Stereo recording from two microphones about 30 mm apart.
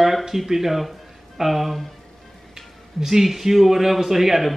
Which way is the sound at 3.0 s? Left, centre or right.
Centre.